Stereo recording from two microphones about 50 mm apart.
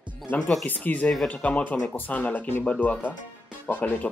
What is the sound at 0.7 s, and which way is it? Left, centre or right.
Speech, left.